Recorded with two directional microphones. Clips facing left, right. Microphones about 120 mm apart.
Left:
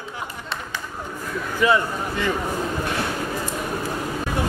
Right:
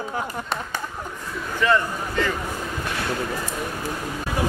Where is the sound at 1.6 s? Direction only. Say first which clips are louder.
Left 1 dB; 10° left (ahead or behind).